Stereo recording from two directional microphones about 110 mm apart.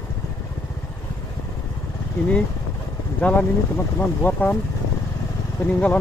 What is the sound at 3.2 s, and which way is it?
Speech, 15° left (ahead or behind).